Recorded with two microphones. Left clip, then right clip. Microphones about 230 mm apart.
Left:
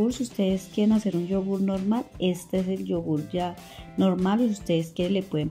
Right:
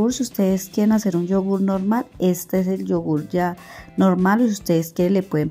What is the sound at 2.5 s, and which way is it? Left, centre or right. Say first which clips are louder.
Speech: right 6 dB; right.